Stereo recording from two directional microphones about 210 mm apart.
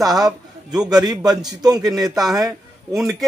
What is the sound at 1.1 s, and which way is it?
Speech, 20° right (ahead or behind).